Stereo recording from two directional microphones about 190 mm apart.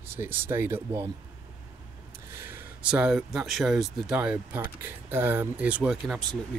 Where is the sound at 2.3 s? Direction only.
10° right (ahead or behind).